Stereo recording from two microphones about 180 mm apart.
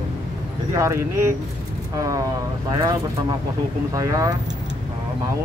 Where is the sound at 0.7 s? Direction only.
15° right (ahead or behind).